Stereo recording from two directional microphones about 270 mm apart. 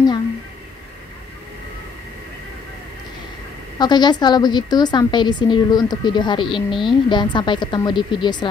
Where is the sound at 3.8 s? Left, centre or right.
Centre.